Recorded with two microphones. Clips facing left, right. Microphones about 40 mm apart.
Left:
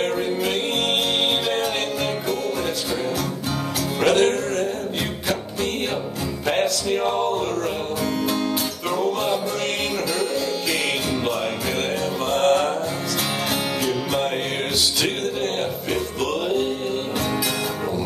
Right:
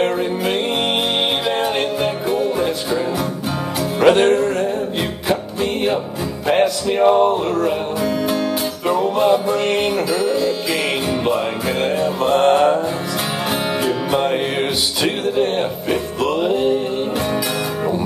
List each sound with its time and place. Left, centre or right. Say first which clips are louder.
2.4 s music: right 5 dB; right
4.0 s music: right 6 dB; right
11.8 s music: right 9 dB; centre
13.8 s music: right 6 dB; right